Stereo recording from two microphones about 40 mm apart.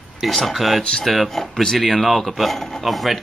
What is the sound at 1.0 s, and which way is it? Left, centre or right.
Speech, centre.